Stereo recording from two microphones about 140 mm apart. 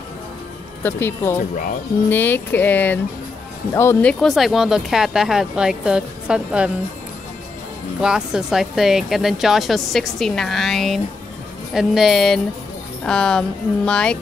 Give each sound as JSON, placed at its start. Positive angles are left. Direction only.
{"t": 0.8, "sound": "speech", "side_deg": 15}
{"t": 4.1, "sound": "speech", "side_deg": 0}
{"t": 8.0, "sound": "speech", "side_deg": -5}